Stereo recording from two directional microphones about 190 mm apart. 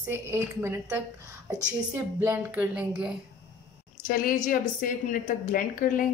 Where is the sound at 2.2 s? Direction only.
10° right (ahead or behind).